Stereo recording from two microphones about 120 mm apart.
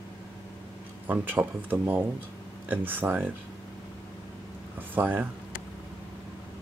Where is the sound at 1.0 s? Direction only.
15° right (ahead or behind).